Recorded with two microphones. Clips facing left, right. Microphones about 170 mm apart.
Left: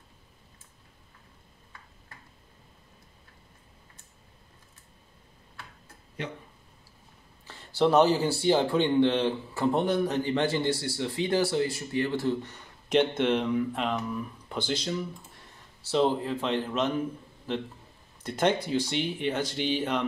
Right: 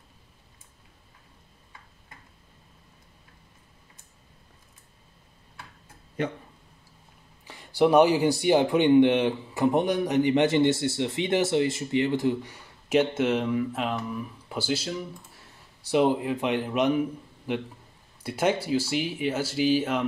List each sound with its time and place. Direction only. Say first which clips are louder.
7.4 s speech: right 3 dB; 15° right (ahead or behind)
15.9 s speech: right 3 dB; 15° right (ahead or behind)